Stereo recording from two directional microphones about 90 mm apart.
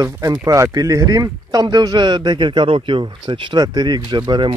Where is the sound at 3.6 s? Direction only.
50° right (ahead or behind).